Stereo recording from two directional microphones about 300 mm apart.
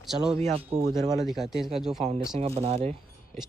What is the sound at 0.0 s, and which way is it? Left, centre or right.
Speech, centre.